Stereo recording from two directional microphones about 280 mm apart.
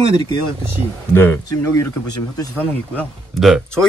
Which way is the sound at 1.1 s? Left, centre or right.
Centre.